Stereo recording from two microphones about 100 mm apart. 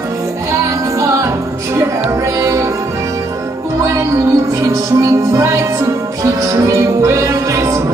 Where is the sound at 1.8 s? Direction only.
30° right (ahead or behind).